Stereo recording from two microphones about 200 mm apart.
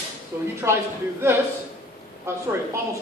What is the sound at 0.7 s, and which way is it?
Speech, 10° right (ahead or behind).